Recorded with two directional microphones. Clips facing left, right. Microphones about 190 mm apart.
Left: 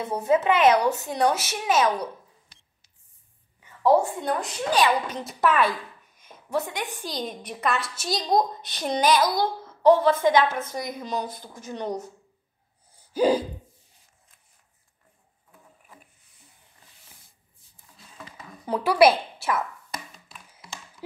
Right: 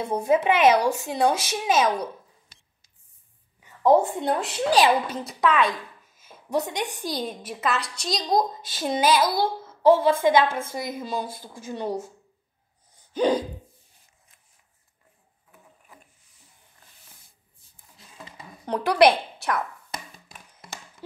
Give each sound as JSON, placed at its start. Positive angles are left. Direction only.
{"t": 0.0, "sound": "a woman's voice", "side_deg": -10}
{"t": 3.8, "sound": "a woman's voice", "side_deg": -20}
{"t": 5.1, "sound": "a woman's voice", "side_deg": 0}
{"t": 6.1, "sound": "a sound", "side_deg": -10}
{"t": 7.0, "sound": "a woman's voice", "side_deg": -10}
{"t": 13.1, "sound": "gasp", "side_deg": 5}
{"t": 17.9, "sound": "a sound", "side_deg": -20}
{"t": 18.7, "sound": "a woman's voice", "side_deg": 5}